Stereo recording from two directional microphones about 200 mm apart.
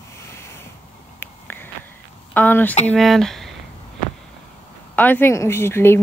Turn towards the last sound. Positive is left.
turn(degrees=10)  # may be behind; listen again after turning